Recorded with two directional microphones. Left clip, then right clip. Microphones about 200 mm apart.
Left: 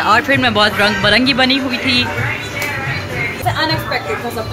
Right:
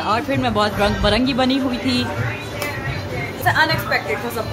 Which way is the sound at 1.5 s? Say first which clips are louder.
Left 5 dB; 25° right (ahead or behind).